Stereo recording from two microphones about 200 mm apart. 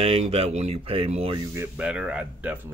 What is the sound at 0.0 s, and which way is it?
Speech, 30° right (ahead or behind).